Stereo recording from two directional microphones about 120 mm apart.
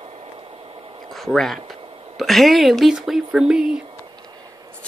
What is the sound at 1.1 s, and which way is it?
Speech, centre (ahead or behind).